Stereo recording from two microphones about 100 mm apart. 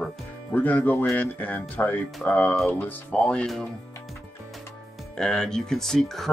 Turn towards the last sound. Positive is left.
turn(degrees=5)  # may be behind; listen again after turning